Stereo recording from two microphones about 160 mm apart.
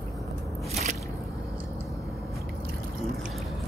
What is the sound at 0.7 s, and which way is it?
Squish, 45° right (ahead or behind).